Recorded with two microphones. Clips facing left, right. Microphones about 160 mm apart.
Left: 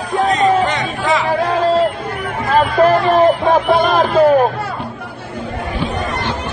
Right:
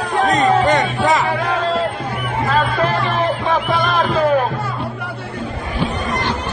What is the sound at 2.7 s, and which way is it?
Music, 45° left (ahead or behind).